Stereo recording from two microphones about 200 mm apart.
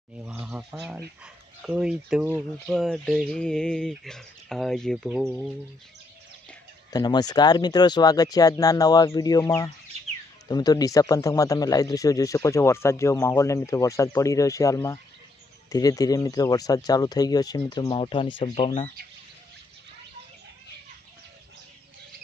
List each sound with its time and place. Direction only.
0.2 s speech: 5° right (ahead or behind)
6.9 s speech: 20° left (ahead or behind)